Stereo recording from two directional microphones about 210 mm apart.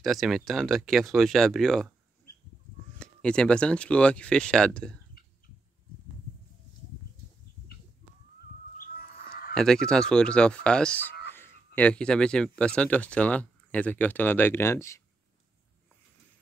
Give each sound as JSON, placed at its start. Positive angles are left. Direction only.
{"t": 0.0, "sound": "speech", "side_deg": 0}
{"t": 3.0, "sound": "speech", "side_deg": 5}
{"t": 8.7, "sound": "a sound", "side_deg": 40}
{"t": 9.5, "sound": "speech", "side_deg": 5}